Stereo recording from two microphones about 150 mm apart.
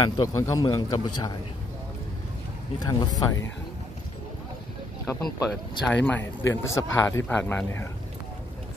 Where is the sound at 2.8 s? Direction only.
25° left (ahead or behind).